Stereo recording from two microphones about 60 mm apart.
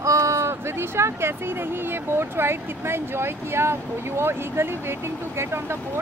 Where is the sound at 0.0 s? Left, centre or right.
Right.